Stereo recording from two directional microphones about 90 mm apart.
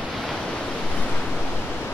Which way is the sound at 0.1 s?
Centre (ahead or behind).